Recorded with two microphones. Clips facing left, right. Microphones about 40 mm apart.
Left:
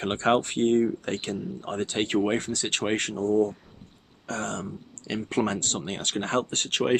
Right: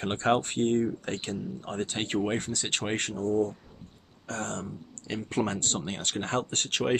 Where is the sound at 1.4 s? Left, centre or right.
Left.